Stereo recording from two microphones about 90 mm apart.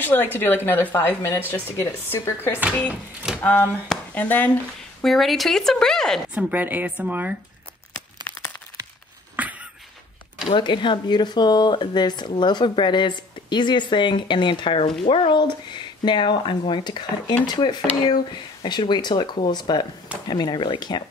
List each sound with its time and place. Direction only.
0.0 s speech: 20° left (ahead or behind)
2.6 s speech: 15° right (ahead or behind)
3.3 s speech: 25° left (ahead or behind)
5.0 s a woman's voice: centre (ahead or behind)
6.3 s speech: 20° right (ahead or behind)
8.3 s a sound: 15° left (ahead or behind)
9.4 s a sound: 15° right (ahead or behind)
10.5 s speech: 60° left (ahead or behind)